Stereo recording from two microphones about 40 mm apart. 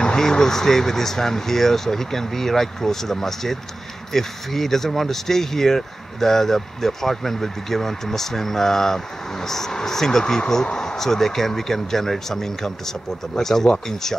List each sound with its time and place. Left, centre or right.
0.0 s speech: centre